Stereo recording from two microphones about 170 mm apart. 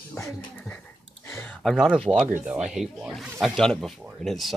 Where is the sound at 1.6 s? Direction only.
Centre (ahead or behind).